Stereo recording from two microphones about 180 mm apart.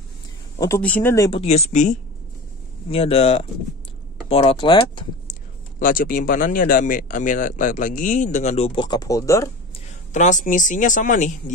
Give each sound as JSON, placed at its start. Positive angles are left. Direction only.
{"t": 0.6, "sound": "speech", "side_deg": 15}
{"t": 1.3, "sound": "speech", "side_deg": 35}
{"t": 5.3, "sound": "speech", "side_deg": 50}
{"t": 10.1, "sound": "speech", "side_deg": 45}